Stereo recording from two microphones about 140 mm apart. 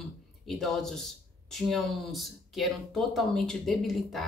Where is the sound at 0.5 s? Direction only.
Centre (ahead or behind).